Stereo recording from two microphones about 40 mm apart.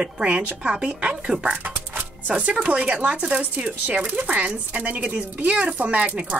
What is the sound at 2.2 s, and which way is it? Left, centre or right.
Speech, right.